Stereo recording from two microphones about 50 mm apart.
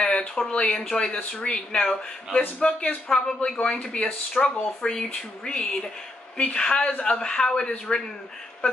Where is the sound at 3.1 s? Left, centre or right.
Centre.